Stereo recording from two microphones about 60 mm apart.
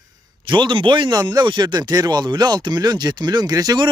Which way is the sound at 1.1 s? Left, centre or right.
Right.